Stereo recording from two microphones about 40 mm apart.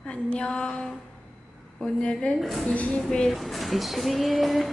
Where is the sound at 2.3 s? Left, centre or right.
Left.